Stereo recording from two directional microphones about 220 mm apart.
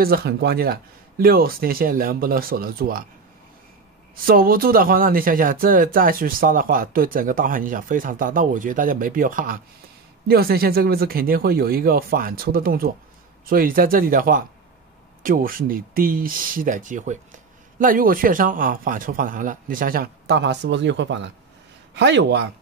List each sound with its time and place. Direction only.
0.0 s speech: 45° right (ahead or behind)
4.3 s speech: 40° right (ahead or behind)